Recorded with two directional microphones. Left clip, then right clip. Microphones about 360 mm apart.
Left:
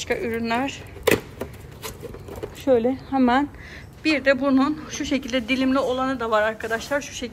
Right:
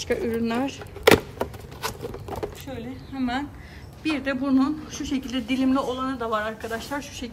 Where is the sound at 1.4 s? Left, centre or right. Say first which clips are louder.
Right 5 dB; centre.